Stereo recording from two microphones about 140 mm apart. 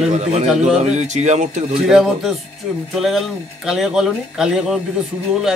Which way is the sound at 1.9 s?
5° right (ahead or behind).